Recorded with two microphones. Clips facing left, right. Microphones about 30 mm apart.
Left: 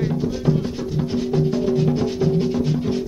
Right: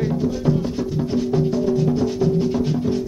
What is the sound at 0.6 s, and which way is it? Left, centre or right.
Music, left.